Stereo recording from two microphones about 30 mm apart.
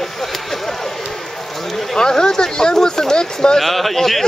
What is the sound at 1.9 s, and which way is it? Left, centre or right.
Speech, left.